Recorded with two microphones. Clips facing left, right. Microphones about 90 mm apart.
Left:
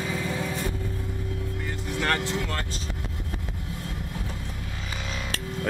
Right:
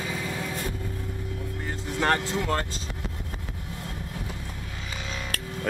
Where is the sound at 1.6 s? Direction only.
25° right (ahead or behind).